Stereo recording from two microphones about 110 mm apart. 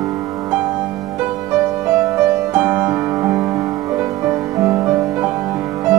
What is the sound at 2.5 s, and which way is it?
Music, 20° right (ahead or behind).